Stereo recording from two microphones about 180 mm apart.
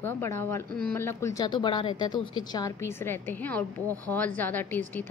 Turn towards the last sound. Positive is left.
turn(degrees=10)  # may be behind; listen again after turning